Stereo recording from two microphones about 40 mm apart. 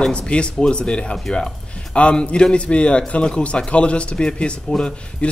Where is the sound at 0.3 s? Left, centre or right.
Left.